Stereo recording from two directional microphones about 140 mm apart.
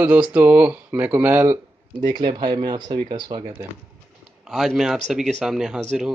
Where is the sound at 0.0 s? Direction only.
10° right (ahead or behind).